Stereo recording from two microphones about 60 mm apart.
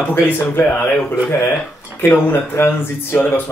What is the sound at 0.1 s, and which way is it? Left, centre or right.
Speech, left.